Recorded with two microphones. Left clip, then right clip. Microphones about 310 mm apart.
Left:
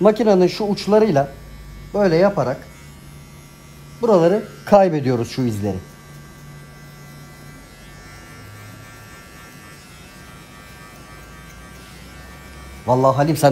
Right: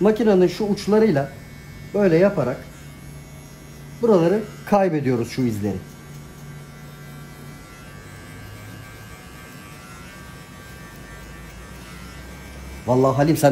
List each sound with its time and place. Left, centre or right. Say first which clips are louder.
0.0 s speech: left 3 dB; left
4.0 s speech: left 3 dB; left
12.8 s speech: left 3 dB; left
13.1 s speech: left 2 dB; centre